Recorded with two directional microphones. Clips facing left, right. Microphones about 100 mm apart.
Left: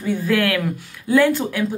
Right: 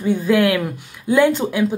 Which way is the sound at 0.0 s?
20° right (ahead or behind).